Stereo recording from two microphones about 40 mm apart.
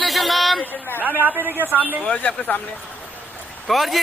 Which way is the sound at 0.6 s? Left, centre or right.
Left.